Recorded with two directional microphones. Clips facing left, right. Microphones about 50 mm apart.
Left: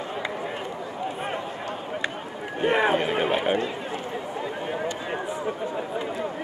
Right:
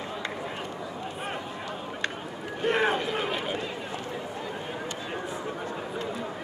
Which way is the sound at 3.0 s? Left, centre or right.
Left.